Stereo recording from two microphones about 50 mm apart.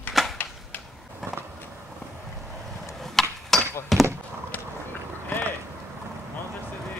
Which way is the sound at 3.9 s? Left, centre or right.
Centre.